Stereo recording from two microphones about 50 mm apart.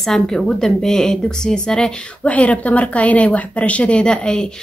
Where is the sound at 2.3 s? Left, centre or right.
Left.